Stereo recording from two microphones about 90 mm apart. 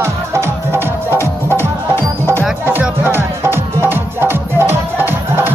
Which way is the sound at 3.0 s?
25° right (ahead or behind).